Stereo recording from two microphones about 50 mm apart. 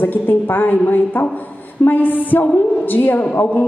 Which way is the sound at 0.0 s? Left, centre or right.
Left.